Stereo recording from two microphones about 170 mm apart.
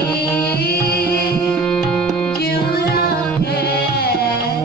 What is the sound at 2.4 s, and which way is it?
Tabla, 65° left (ahead or behind).